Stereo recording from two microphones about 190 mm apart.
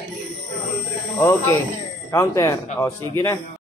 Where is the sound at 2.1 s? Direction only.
15° left (ahead or behind).